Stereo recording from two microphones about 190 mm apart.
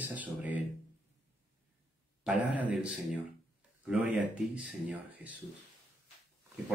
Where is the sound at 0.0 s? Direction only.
10° right (ahead or behind).